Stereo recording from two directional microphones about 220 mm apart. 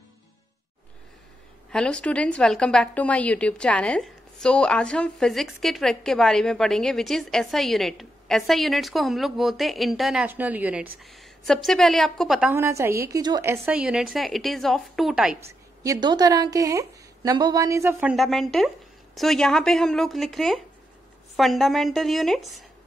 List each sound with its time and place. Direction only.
1.7 s a woman's voice: 5° left (ahead or behind)
15.8 s a woman's voice: 15° right (ahead or behind)
18.1 s a woman's voice: centre (ahead or behind)